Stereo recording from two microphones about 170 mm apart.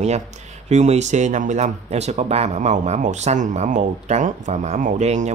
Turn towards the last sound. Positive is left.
turn(degrees=-45)  # may be behind; listen again after turning